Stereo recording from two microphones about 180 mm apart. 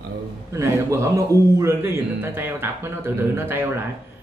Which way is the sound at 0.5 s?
15° right (ahead or behind).